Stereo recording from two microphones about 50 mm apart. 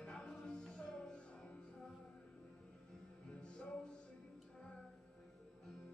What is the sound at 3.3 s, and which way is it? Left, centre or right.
Music, left.